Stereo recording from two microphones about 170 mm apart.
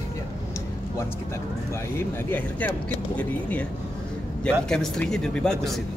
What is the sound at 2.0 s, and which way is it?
Speech, 10° left (ahead or behind).